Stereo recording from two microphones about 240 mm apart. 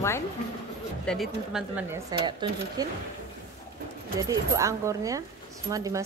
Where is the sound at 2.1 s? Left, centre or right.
Centre.